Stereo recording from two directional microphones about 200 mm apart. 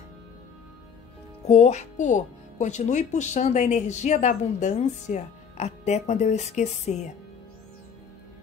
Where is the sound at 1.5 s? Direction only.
35° left (ahead or behind).